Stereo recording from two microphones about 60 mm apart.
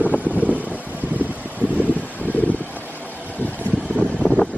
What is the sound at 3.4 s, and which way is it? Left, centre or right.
Vehicle, left.